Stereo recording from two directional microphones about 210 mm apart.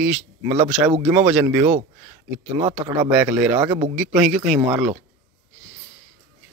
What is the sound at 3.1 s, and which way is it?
Speech, 5° right (ahead or behind).